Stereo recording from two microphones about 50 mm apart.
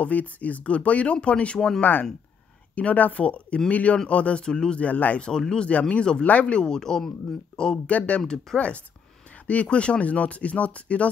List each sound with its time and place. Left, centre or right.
0.0 s speech: left
1.8 s speech: left
5.2 s speech: centre
5.7 s speech: left; by 8.5 s centre
8.5 s speech: left